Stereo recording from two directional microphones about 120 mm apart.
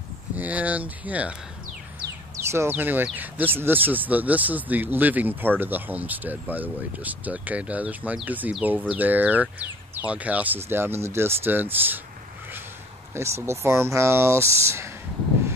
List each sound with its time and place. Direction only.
0.4 s speech: 10° right (ahead or behind)
2.5 s speech: 20° right (ahead or behind)
13.1 s speech: 20° right (ahead or behind)